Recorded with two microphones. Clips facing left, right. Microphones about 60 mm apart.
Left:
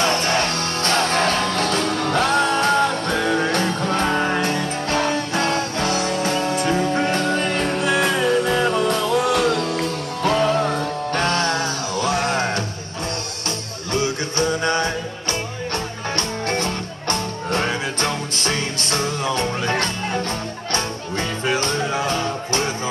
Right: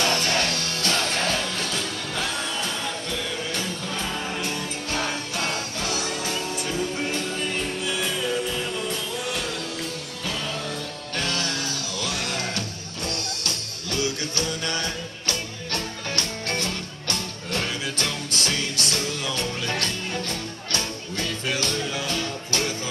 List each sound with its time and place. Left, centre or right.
0.0 s music: left
13.9 s music: left